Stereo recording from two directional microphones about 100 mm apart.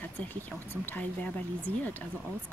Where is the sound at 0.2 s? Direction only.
15° left (ahead or behind).